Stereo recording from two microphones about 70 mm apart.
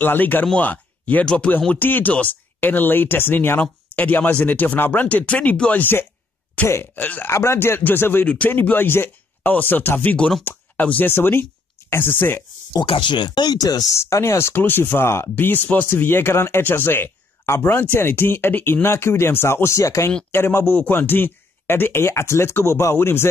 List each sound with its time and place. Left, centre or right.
0.0 s speech: left
1.7 s speech: left
7.2 s speech: left
12.7 s speech: left
13.9 s speech: left
20.2 s speech: left